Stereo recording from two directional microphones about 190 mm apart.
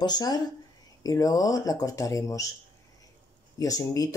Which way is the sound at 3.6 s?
20° left (ahead or behind).